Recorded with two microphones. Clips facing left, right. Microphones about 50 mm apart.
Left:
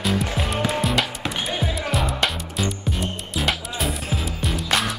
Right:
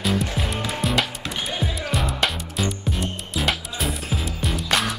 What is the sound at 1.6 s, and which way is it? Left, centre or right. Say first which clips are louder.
Music: left 1 dB; centre.